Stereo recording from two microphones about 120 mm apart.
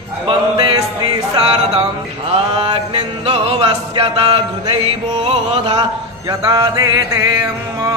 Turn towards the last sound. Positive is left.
turn(degrees=-25)  # may be behind; listen again after turning